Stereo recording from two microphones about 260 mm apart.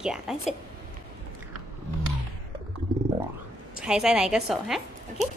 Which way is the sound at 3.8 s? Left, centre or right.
Centre.